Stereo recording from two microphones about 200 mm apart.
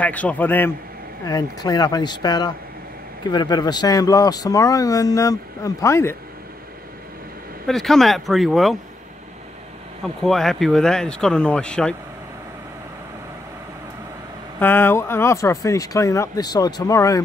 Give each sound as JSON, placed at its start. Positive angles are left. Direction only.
{"t": 0.0, "sound": "speech", "side_deg": 5}
{"t": 7.6, "sound": "speech", "side_deg": 0}
{"t": 10.0, "sound": "speech", "side_deg": 0}
{"t": 14.6, "sound": "speech", "side_deg": 10}